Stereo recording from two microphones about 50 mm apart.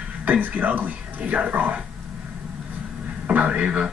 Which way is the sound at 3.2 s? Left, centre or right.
Right.